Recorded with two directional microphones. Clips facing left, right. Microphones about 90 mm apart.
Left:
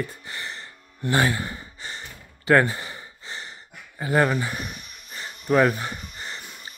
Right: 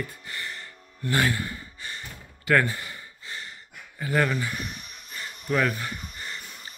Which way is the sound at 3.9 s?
30° left (ahead or behind).